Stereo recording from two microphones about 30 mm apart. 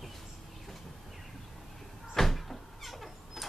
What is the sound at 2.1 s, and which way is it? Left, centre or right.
Sliding door, centre.